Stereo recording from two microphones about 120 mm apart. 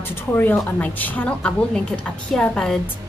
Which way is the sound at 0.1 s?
15° left (ahead or behind).